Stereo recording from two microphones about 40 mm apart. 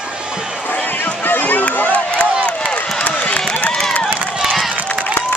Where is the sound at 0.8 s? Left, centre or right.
Left.